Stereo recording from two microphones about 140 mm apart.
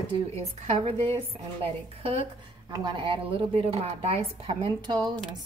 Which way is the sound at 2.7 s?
35° right (ahead or behind).